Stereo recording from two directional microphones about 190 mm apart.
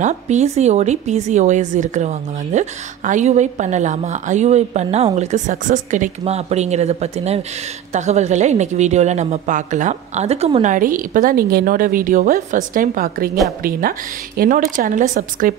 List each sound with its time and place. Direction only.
0.0 s a woman's voice: 35° right (ahead or behind)